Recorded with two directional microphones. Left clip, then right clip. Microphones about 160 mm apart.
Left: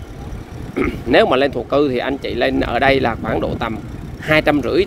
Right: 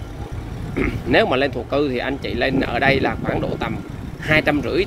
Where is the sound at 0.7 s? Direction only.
30° left (ahead or behind).